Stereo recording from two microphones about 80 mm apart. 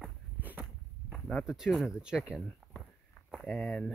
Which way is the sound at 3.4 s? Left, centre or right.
Centre.